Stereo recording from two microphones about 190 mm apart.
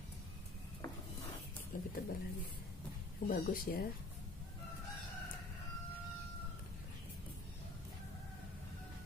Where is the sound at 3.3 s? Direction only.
50° left (ahead or behind).